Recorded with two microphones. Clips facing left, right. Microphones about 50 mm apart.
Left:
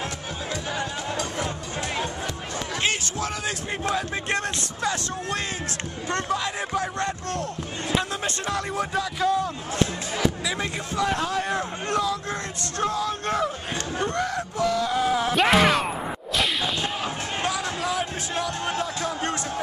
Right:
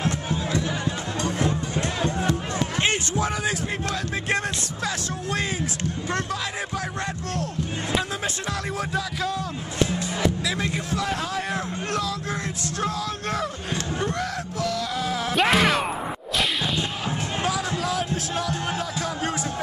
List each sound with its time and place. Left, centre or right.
2.8 s a sound: right
8.5 s music: centre
10.6 s a man's voice: centre
12.8 s music: centre
15.3 s a sound: centre
17.4 s music: centre